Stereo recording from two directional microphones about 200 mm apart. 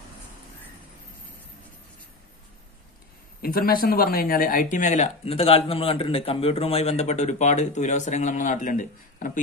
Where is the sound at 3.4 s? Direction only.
50° left (ahead or behind).